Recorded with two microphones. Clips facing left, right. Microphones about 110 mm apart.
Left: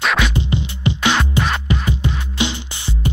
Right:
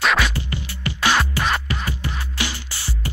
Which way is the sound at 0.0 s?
Centre (ahead or behind).